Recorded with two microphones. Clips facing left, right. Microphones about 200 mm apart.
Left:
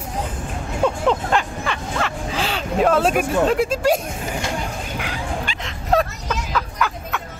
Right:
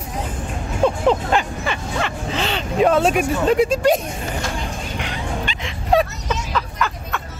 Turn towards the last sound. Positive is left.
turn(degrees=5)  # may be behind; listen again after turning